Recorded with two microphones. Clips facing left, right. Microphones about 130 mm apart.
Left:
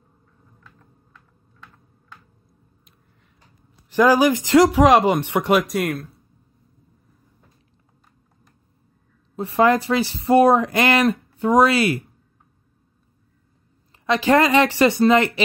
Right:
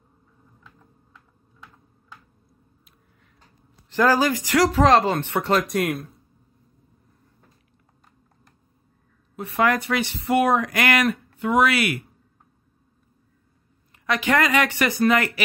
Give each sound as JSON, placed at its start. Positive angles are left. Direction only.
{"t": 0.7, "sound": "typing", "side_deg": -10}
{"t": 3.9, "sound": "speech", "side_deg": 15}
{"t": 4.6, "sound": "speech", "side_deg": 10}
{"t": 5.7, "sound": "speech", "side_deg": 0}
{"t": 9.4, "sound": "speech", "side_deg": 30}
{"t": 14.0, "sound": "speech", "side_deg": 30}